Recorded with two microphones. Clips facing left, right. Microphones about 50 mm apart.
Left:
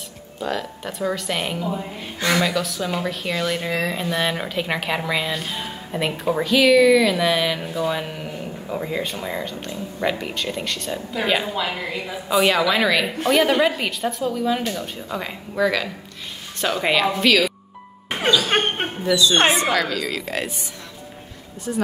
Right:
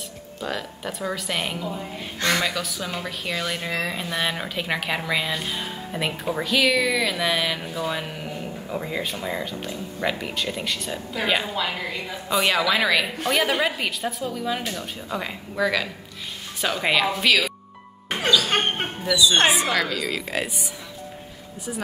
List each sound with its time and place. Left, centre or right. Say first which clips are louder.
0.4 s a woman's voice: left 4 dB; centre
18.5 s dog: left 3 dB; left
19.5 s a woman's voice: left 2 dB; centre
21.7 s a woman's voice: left 7 dB; centre